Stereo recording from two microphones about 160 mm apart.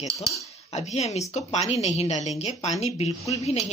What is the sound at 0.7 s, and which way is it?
Frying, 40° left (ahead or behind).